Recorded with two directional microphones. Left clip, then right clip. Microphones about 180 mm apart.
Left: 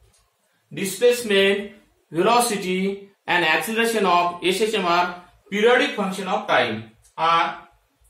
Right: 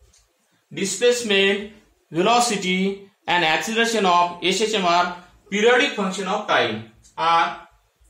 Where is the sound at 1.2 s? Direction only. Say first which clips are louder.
Even; 25° right (ahead or behind).